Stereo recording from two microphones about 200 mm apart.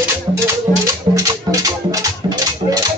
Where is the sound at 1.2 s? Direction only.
15° right (ahead or behind).